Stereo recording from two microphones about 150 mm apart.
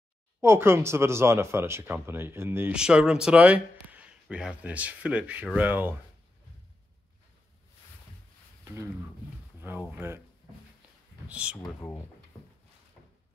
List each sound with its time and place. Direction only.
0.4 s speech: 15° right (ahead or behind)
9.6 s speech: 10° right (ahead or behind)
11.2 s speech: 10° right (ahead or behind)